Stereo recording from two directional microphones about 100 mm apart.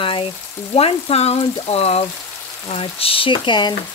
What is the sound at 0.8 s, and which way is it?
Frying, 70° left (ahead or behind).